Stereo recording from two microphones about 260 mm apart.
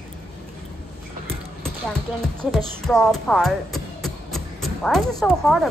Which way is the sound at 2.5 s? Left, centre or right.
Centre.